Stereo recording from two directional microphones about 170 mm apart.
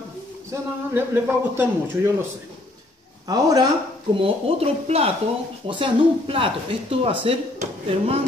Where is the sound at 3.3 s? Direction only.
20° right (ahead or behind).